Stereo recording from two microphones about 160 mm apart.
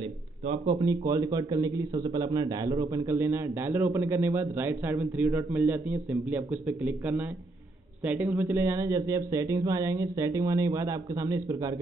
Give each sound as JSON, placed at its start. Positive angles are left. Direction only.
{"t": 0.7, "sound": "a man's voice", "side_deg": -25}